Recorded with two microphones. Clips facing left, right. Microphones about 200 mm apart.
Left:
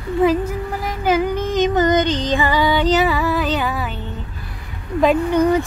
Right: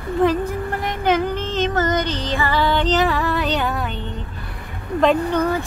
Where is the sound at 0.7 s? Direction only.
5° left (ahead or behind).